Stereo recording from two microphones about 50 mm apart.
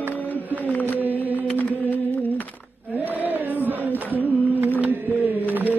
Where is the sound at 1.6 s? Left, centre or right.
Left.